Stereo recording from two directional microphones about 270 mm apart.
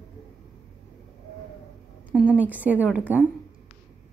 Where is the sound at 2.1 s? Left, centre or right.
Centre.